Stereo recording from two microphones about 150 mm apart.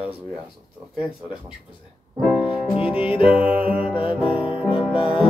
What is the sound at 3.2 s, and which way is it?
Speech, 10° right (ahead or behind).